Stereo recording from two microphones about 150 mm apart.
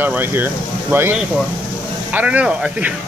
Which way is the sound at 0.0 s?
15° right (ahead or behind).